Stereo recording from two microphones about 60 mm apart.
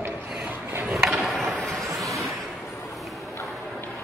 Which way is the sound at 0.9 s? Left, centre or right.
Centre.